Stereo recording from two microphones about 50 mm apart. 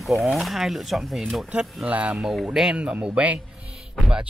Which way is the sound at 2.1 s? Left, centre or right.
Centre.